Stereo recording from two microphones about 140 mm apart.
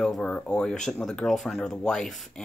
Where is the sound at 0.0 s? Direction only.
5° left (ahead or behind).